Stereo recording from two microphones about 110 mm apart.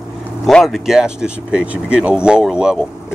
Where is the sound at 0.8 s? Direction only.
5° right (ahead or behind).